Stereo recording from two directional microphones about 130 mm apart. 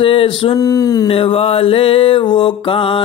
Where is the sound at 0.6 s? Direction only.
25° left (ahead or behind).